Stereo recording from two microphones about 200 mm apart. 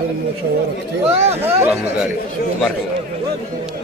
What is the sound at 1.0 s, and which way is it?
Speech, 30° right (ahead or behind).